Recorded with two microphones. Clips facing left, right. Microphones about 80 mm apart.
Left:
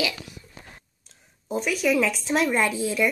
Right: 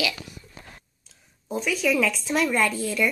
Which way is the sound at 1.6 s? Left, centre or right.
Centre.